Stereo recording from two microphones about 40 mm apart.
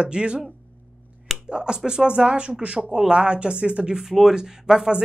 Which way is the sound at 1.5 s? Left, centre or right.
Right.